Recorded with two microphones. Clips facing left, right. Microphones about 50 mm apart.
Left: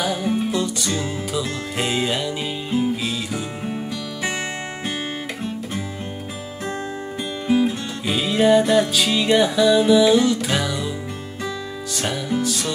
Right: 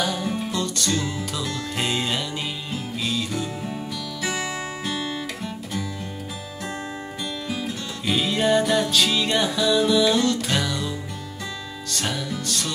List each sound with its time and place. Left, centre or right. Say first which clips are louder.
0.0 s music: left 4 dB; centre
3.6 s music: left 3 dB; left
4.8 s guitar: left 1 dB; left
7.4 s music: left 13 dB; left
8.1 s music: left 4 dB; centre
9.7 s music: left 4 dB; centre
11.9 s music: left 4 dB; centre